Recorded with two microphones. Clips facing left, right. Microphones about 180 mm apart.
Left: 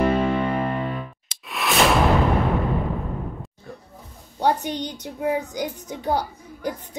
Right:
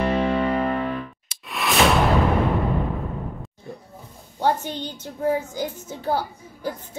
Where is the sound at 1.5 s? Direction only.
Centre (ahead or behind).